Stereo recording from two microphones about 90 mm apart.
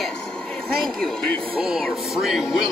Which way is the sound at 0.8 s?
5° left (ahead or behind).